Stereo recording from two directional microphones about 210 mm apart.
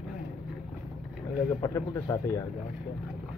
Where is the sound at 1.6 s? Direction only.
15° left (ahead or behind).